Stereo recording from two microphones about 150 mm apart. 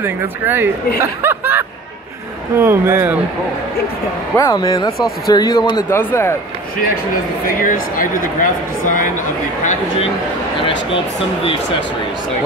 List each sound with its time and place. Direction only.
0.0 s speech: 15° right (ahead or behind)
1.2 s snicker: 15° right (ahead or behind)
2.6 s speech: 15° right (ahead or behind)
4.4 s speech: 25° left (ahead or behind)
5.9 s speech: 15° left (ahead or behind)
7.4 s speech: 65° left (ahead or behind)